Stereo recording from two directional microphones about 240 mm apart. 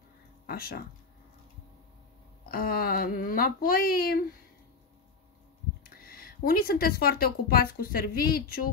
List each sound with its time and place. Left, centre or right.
0.5 s speech: left
2.4 s speech: left
5.9 s speech: left